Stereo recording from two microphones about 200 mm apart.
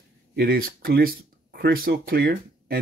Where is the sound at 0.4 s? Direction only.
50° right (ahead or behind).